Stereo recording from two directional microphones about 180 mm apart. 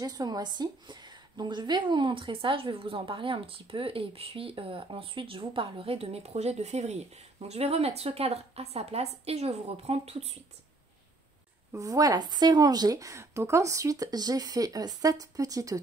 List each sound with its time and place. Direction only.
0.0 s a woman's voice: 20° right (ahead or behind)
11.7 s speech: 20° right (ahead or behind)